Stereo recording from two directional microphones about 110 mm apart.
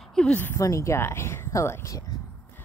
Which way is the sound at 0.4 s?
20° left (ahead or behind).